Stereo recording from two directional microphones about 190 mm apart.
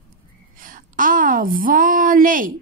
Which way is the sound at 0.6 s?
45° right (ahead or behind).